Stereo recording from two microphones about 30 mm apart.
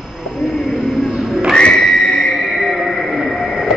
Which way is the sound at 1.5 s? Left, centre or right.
Left.